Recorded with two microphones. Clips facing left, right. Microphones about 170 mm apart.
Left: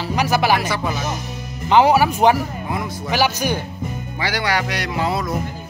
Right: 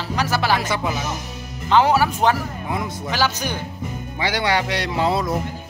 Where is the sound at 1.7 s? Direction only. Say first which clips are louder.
Left 3 dB; 15° left (ahead or behind).